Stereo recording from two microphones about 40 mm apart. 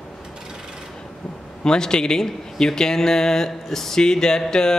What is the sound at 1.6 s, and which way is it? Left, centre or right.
A man's voice, centre.